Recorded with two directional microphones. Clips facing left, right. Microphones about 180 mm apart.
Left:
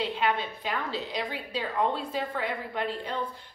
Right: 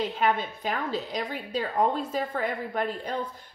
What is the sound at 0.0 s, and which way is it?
A woman's voice, 45° right (ahead or behind).